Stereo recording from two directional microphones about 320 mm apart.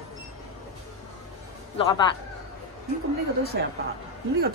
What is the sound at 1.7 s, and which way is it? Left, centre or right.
Speech, centre.